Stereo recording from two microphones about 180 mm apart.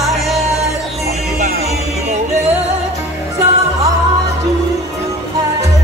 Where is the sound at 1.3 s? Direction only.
45° right (ahead or behind).